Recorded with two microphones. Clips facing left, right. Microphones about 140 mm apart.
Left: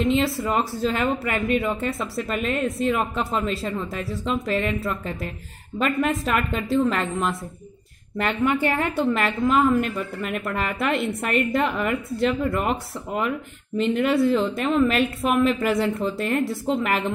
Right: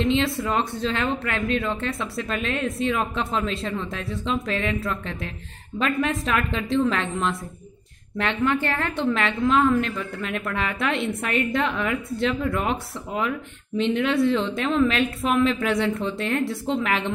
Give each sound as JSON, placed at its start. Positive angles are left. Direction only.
{"t": 0.0, "sound": "a woman's voice", "side_deg": 0}